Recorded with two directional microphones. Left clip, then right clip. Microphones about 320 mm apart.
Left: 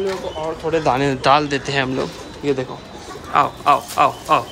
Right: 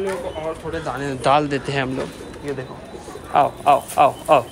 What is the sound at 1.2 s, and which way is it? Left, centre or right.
Speech, centre.